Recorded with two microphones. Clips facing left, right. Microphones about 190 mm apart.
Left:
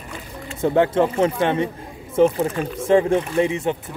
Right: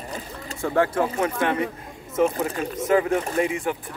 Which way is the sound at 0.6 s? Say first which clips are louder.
Left 5 dB; 20° left (ahead or behind).